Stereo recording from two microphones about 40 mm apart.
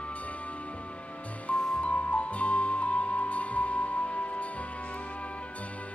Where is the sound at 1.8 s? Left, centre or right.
Left.